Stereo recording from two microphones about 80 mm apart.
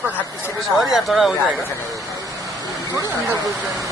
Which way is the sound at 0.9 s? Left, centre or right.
Centre.